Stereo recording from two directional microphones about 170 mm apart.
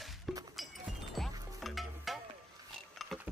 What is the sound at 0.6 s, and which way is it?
Music, centre (ahead or behind).